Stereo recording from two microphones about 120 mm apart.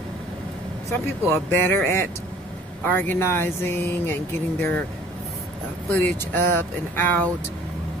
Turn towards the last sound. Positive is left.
turn(degrees=15)  # may be behind; listen again after turning